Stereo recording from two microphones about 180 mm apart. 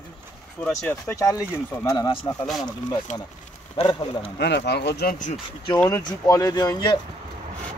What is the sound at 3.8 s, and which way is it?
Speech, 35° left (ahead or behind).